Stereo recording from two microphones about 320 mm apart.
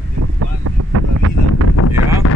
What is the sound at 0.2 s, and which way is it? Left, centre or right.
Wind noise, right.